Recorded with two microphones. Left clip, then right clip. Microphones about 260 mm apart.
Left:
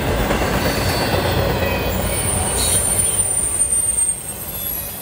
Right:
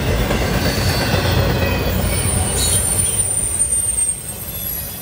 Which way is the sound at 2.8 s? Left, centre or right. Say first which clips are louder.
Even; left.